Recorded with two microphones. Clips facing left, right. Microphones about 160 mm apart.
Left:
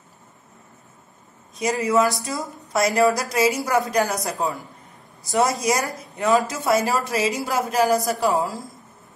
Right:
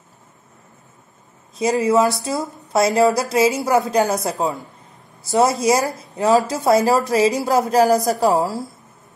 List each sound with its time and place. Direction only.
1.8 s a woman's voice: 30° right (ahead or behind)
5.6 s a woman's voice: 30° right (ahead or behind)